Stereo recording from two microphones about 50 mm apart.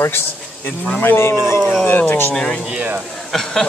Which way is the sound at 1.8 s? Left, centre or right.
Left.